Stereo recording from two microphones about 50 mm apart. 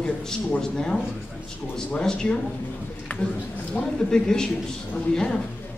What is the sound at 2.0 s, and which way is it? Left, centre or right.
Speech, centre.